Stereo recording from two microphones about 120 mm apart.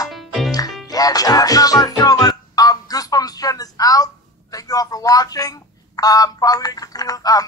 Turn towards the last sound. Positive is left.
turn(degrees=30)  # may be behind; listen again after turning